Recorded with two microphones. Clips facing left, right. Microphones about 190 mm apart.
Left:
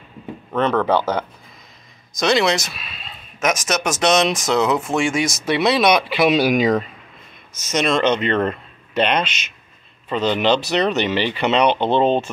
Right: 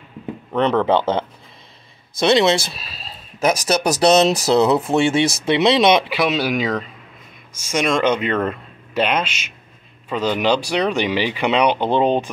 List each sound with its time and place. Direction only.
0.5 s speech: 15° right (ahead or behind)
6.1 s speech: 10° left (ahead or behind)
7.5 s speech: 10° right (ahead or behind)